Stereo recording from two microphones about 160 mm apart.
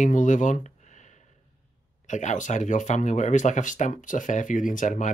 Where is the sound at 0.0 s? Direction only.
50° left (ahead or behind).